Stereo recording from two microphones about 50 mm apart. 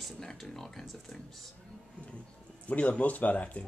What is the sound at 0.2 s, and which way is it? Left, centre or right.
Speech, centre.